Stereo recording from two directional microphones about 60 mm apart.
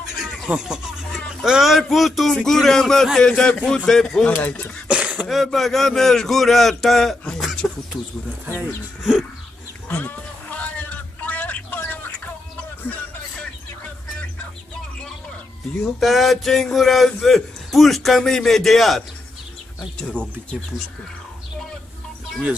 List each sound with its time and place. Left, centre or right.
0.5 s a man's voice: centre
4.3 s speech: left
4.8 s throat clearing: centre
5.3 s a man's voice: centre
7.6 s a sound: centre
9.8 s a sound: left
15.8 s a man's voice: centre